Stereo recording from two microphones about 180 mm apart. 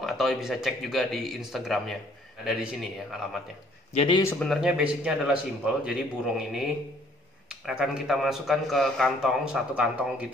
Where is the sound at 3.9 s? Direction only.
35° left (ahead or behind).